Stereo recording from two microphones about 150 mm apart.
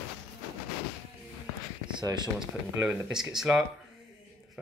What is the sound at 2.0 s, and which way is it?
Speech, 30° right (ahead or behind).